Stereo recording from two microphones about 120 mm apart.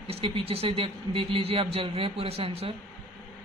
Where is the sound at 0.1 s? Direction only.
55° right (ahead or behind).